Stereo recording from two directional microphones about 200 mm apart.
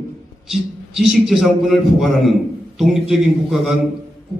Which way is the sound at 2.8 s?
Centre (ahead or behind).